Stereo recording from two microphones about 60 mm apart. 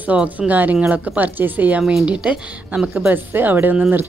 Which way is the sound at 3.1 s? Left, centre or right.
Right.